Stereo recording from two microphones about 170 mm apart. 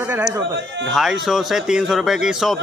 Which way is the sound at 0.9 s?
Centre (ahead or behind).